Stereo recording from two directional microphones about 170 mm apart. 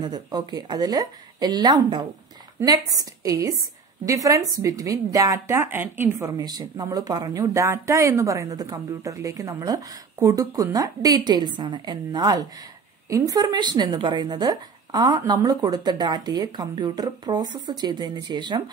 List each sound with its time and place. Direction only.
0.0 s speech: 25° right (ahead or behind)